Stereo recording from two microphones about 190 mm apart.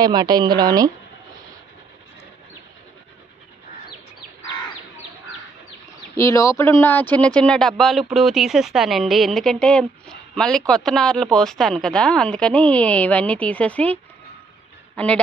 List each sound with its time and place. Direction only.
0.0 s a woman's voice: 20° right (ahead or behind)
6.1 s a woman's voice: 15° left (ahead or behind)
15.0 s a woman's voice: 5° left (ahead or behind)